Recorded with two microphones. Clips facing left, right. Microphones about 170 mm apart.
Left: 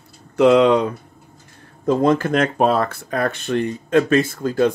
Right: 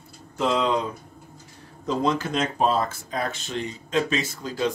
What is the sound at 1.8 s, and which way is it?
Speech, 50° left (ahead or behind).